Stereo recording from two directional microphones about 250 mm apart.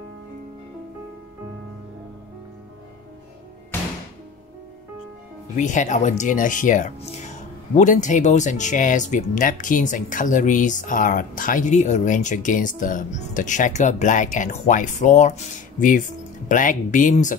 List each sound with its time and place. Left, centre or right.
5.6 s speech: left